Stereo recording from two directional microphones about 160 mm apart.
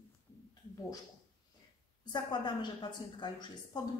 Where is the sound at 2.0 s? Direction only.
25° left (ahead or behind).